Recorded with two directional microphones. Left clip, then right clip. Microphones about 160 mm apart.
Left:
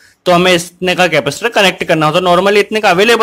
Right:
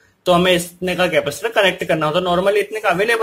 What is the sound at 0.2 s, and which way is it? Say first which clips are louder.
Speech: left 5 dB; 30° left (ahead or behind).